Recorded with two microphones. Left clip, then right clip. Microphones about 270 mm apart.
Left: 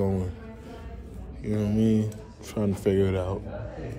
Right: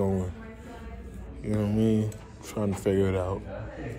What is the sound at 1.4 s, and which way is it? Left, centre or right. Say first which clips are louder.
Speech: left 1 dB; centre.